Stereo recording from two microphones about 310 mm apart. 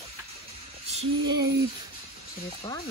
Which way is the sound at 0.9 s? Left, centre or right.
Centre.